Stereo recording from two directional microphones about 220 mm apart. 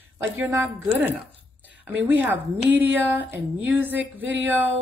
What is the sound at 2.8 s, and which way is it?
A woman's voice, 10° right (ahead or behind).